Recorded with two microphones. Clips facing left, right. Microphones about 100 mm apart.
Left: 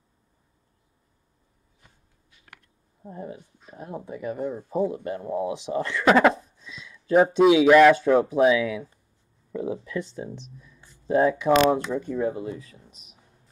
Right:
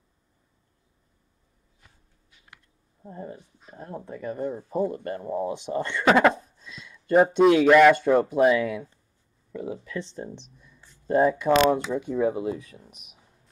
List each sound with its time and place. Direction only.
2.4 s a sound: 60° left (ahead or behind)
3.0 s speech: 10° left (ahead or behind)
4.6 s speech: centre (ahead or behind)
9.5 s speech: 50° left (ahead or behind)
9.8 s speech: 10° left (ahead or behind)
12.0 s speech: 15° right (ahead or behind)